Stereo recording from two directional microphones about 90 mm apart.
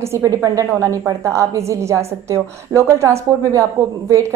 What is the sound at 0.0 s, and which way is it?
A woman's voice, 30° right (ahead or behind).